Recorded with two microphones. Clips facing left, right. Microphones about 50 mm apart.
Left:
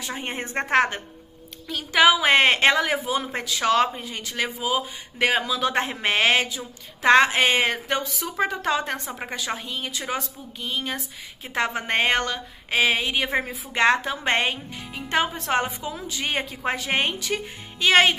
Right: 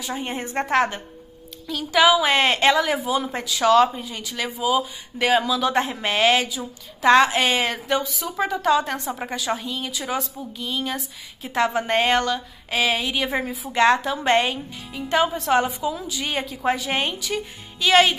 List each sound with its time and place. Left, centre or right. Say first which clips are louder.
0.0 s a woman's voice: right 2 dB; left
15.0 s speech: right 3 dB; left